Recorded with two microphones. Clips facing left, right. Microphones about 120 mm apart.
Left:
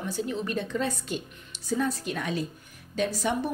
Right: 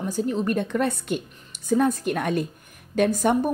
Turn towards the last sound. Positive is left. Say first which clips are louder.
# right 7 dB
turn(degrees=-50)  # may be behind; listen again after turning